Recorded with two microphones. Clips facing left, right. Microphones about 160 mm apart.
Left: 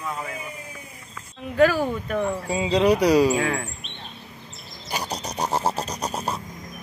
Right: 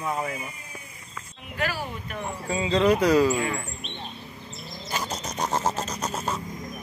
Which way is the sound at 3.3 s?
90° left.